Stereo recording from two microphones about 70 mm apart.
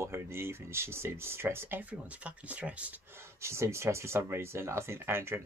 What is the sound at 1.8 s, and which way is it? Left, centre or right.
Speech, centre.